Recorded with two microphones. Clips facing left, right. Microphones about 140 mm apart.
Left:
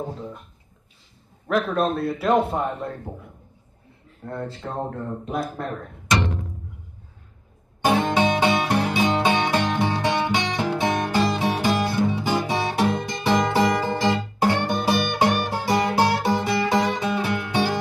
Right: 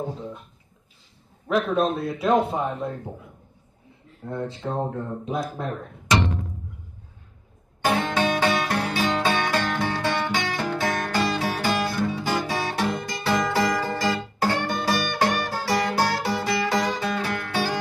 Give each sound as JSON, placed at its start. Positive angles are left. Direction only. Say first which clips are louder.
{"t": 0.0, "sound": "a man's voice", "louder": "even", "side_deg": 5}
{"t": 1.5, "sound": "a man's voice", "louder": "even", "side_deg": 0}
{"t": 4.2, "sound": "a man's voice", "louder": "right 1 dB", "side_deg": 0}
{"t": 7.8, "sound": "music", "louder": "left 3 dB", "side_deg": 15}